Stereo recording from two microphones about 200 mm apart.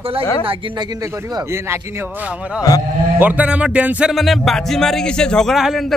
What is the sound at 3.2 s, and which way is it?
Music, 10° right (ahead or behind).